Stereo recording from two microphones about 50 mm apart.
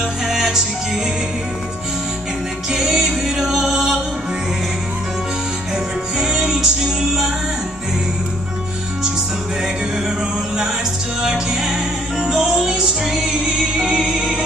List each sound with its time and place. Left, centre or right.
0.3 s music: centre
2.7 s music: centre
6.1 s music: centre
11.2 s music: centre